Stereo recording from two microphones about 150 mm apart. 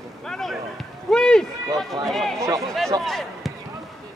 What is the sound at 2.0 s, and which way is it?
Speech, centre (ahead or behind).